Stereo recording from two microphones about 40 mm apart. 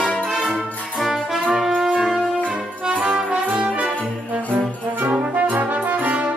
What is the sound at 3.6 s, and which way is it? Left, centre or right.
Brass instrument, right.